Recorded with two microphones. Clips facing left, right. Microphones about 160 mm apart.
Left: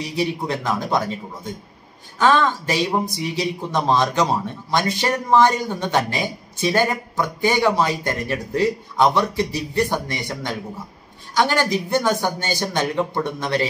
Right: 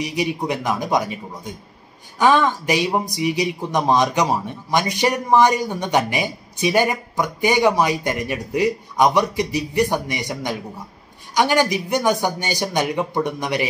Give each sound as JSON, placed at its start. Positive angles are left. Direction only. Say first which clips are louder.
{"t": 0.0, "sound": "speech", "louder": "right 1 dB", "side_deg": -15}